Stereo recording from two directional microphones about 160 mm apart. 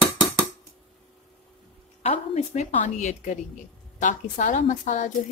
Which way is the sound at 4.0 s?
55° left (ahead or behind).